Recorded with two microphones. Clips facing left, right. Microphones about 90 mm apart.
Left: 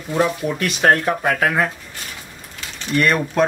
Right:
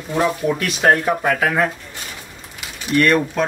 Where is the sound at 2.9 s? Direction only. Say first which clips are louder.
Right 3 dB; 10° left (ahead or behind).